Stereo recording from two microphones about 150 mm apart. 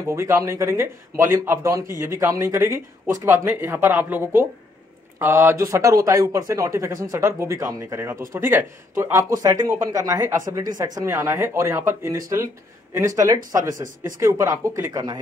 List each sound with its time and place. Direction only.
0.0 s speech: 20° right (ahead or behind)